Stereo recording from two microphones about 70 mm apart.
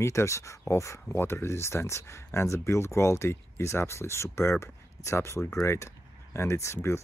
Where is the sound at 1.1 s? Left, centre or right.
Left.